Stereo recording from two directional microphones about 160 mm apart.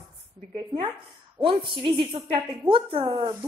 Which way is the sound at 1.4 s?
35° right (ahead or behind).